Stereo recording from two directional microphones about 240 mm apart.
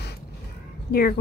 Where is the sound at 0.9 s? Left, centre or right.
Left.